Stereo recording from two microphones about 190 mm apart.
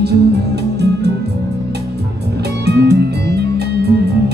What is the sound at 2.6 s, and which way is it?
Music, 60° right (ahead or behind).